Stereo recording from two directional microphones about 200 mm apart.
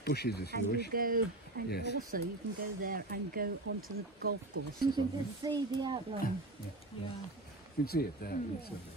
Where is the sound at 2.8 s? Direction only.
45° right (ahead or behind).